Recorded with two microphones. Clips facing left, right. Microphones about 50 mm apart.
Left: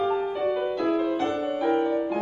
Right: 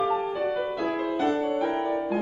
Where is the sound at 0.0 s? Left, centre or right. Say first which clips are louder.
Left 1 dB; centre.